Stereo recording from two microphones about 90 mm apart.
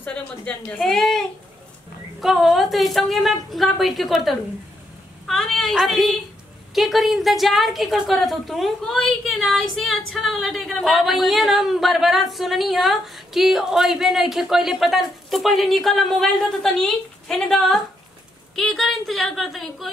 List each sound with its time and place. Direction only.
0.0 s a woman's voice: 20° left (ahead or behind)
0.7 s a woman's voice: 5° left (ahead or behind)